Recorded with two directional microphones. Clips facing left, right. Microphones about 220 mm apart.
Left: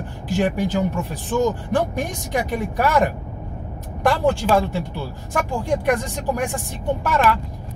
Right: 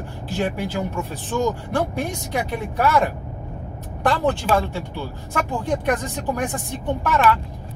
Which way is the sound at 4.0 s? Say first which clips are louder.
Left 2 dB; 10° left (ahead or behind).